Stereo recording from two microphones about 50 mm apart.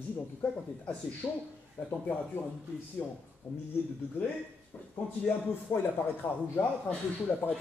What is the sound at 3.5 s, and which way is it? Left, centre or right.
Speech, left.